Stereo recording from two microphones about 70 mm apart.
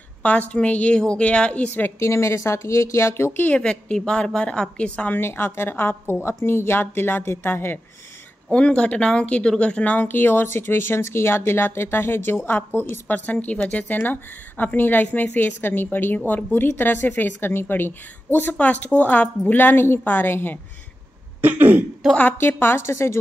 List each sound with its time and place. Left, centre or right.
0.2 s a woman's voice: left
2.0 s speech: left
3.4 s a woman's voice: centre
5.2 s speech: left
8.5 s a woman's voice: centre; by 20.5 s left
21.4 s throat clearing: right
22.4 s speech: left